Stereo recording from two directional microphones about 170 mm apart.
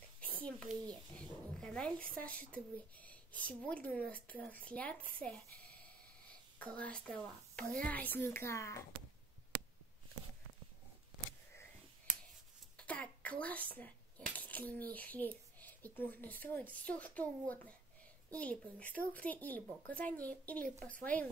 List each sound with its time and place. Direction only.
0.2 s a sound: 5° left (ahead or behind)
1.1 s speech: 5° left (ahead or behind)
12.7 s a child's voice: 10° left (ahead or behind)